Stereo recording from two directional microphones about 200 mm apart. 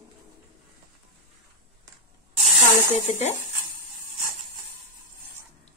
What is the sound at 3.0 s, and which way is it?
Speech, 35° left (ahead or behind).